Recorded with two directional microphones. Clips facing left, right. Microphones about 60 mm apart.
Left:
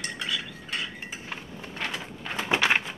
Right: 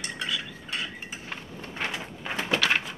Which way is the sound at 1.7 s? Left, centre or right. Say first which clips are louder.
Right 1 dB; centre.